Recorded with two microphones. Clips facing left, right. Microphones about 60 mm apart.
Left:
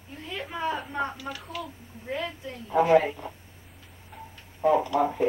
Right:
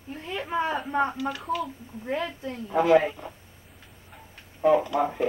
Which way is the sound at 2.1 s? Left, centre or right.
Right.